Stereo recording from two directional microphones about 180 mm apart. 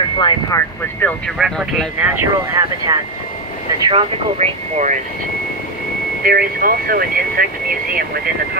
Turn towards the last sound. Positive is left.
turn(degrees=-55)  # may be behind; listen again after turning